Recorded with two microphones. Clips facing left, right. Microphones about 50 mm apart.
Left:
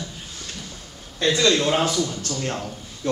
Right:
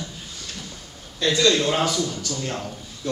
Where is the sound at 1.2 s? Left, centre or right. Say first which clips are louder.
Even; left.